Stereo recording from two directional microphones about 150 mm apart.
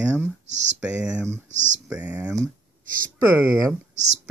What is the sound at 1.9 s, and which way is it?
Speech, 10° right (ahead or behind).